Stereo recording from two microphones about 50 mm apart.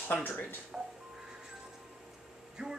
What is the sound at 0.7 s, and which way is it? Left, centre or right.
Speech, centre.